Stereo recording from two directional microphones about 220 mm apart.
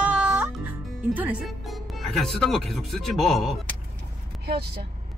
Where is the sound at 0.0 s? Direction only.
5° right (ahead or behind).